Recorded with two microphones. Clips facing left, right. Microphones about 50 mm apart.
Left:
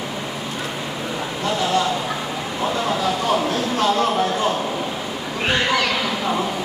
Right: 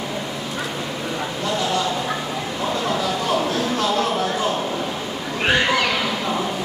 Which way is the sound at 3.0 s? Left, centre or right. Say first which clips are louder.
Left 1 dB; centre.